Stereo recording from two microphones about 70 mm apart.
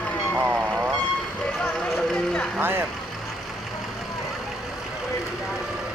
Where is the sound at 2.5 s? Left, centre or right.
Right.